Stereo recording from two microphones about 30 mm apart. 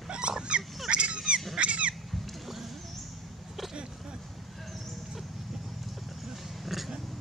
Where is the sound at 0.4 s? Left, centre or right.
Right.